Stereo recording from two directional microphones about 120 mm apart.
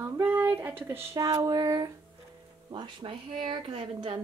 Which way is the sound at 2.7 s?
45° right (ahead or behind).